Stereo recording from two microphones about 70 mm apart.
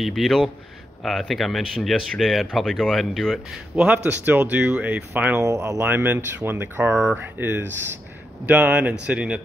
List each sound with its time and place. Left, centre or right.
0.0 s speech: centre
3.7 s speech: right
5.3 s speech: right
5.9 s speech: right
8.5 s speech: right